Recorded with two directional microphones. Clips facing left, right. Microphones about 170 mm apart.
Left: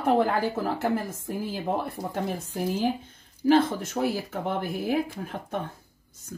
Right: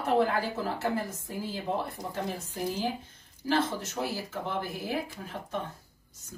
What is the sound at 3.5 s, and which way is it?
Speech, 55° left (ahead or behind).